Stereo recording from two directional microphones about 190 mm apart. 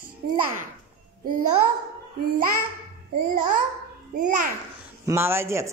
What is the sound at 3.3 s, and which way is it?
Speech, 45° right (ahead or behind).